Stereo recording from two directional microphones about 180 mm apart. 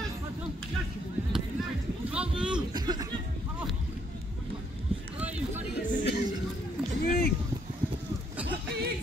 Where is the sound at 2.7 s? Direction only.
20° right (ahead or behind).